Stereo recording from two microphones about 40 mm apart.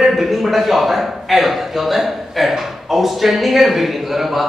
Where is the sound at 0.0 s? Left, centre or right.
Centre.